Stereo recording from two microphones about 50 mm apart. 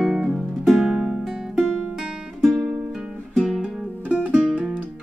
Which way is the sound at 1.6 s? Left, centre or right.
Centre.